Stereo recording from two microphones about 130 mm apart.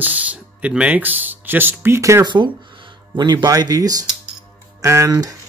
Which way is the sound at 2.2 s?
35° right (ahead or behind).